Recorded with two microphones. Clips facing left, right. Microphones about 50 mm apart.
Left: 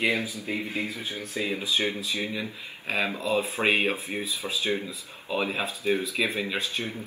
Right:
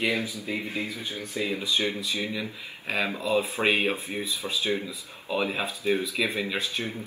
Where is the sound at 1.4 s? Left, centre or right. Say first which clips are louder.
Even; left.